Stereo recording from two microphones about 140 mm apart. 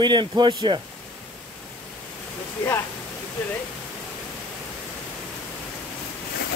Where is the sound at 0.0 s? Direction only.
30° right (ahead or behind).